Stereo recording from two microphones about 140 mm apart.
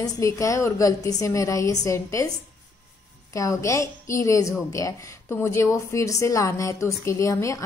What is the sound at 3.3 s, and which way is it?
A woman's voice, 25° left (ahead or behind).